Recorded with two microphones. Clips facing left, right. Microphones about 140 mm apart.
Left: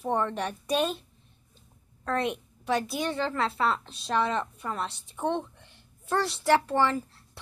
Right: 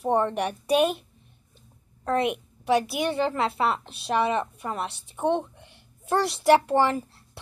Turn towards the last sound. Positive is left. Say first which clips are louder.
# right 3 dB
turn(degrees=-15)  # may be behind; listen again after turning